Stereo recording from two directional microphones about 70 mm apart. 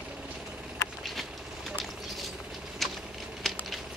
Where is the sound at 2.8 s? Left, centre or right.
Centre.